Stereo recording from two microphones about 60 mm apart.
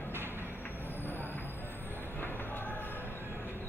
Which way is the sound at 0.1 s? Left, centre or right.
Right.